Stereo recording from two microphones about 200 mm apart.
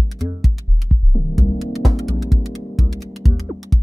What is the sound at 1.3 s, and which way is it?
Music, centre (ahead or behind).